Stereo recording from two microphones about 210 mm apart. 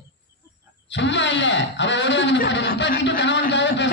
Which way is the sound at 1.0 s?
55° left (ahead or behind).